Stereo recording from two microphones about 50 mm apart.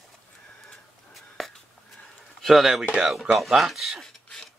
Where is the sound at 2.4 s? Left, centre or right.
Centre.